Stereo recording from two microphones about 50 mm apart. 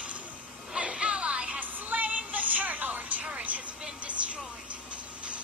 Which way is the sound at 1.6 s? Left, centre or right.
Right.